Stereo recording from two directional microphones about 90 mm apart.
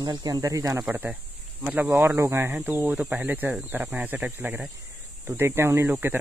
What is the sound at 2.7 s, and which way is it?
Speech, 15° right (ahead or behind).